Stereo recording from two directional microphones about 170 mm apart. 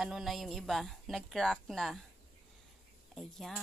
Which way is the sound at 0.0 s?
Centre (ahead or behind).